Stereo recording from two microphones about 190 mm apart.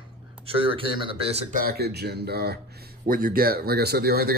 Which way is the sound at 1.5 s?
55° right (ahead or behind).